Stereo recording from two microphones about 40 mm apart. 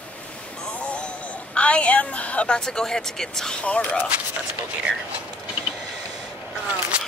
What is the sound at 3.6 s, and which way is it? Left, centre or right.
Speech, left.